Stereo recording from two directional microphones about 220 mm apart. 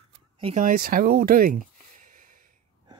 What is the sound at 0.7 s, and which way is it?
Speech, 40° right (ahead or behind).